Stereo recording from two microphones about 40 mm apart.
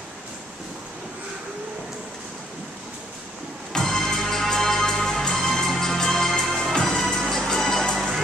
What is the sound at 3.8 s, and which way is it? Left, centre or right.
Music, centre.